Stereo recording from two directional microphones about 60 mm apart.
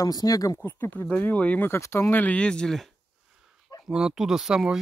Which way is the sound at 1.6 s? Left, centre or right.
Left.